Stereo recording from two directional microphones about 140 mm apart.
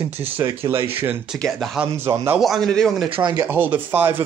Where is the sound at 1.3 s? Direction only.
5° right (ahead or behind).